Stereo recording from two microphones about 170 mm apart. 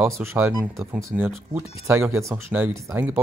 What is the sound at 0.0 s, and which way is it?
Speech, 15° right (ahead or behind).